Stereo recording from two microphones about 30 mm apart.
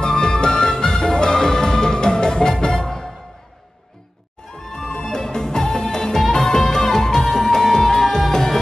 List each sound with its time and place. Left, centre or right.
0.0 s music: left
4.6 s music: centre